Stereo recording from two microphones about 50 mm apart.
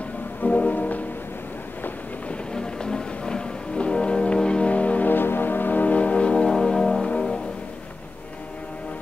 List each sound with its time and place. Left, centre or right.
0.4 s music: left
2.5 s music: centre
5.1 s music: left; by 7.3 s centre